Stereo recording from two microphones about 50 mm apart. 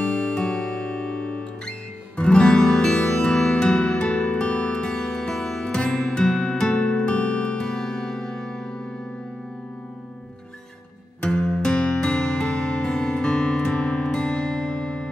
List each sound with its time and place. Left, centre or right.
0.0 s music: left
0.4 s music: centre
11.2 s music: centre